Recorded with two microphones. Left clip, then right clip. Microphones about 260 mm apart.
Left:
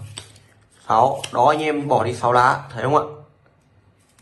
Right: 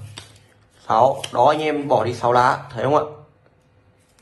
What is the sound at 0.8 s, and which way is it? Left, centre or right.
Speech, centre.